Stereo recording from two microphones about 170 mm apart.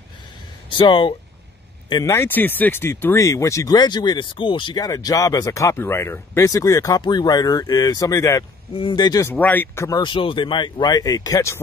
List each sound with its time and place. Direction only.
0.7 s speech: 30° left (ahead or behind)
9.3 s speech: 10° left (ahead or behind)